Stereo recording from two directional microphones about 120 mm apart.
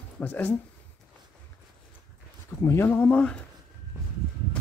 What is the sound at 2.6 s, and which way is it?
Speech, 20° left (ahead or behind).